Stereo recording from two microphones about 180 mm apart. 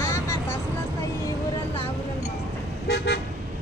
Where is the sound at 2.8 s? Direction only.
65° left (ahead or behind).